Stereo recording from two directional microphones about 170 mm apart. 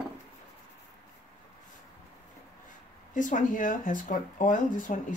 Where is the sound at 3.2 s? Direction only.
50° left (ahead or behind).